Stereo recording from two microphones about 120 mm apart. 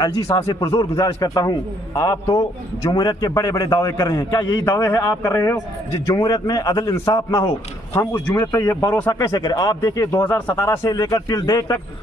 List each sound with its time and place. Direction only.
0.0 s a man's voice: 30° left (ahead or behind)
9.3 s a man's voice: 35° left (ahead or behind)
10.2 s a man's voice: 15° left (ahead or behind)